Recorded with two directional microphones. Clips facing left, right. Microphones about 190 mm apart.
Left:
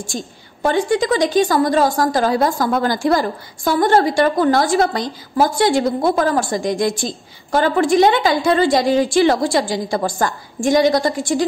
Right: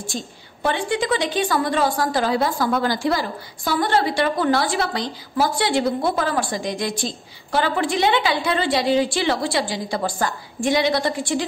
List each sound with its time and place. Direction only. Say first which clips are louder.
0.1 s a woman's voice: left 3 dB; 45° left (ahead or behind)